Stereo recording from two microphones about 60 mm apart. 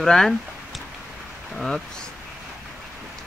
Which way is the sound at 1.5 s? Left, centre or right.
Centre.